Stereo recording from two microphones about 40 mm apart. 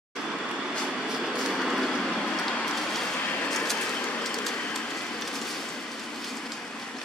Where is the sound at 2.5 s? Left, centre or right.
Left.